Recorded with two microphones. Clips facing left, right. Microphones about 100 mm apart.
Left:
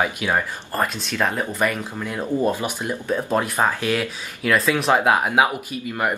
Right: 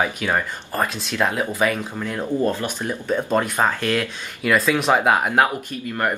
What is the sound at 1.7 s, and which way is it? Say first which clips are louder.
Speech: right 1 dB; 10° left (ahead or behind).